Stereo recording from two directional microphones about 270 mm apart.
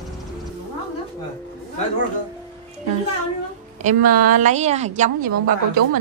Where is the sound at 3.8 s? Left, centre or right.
Right.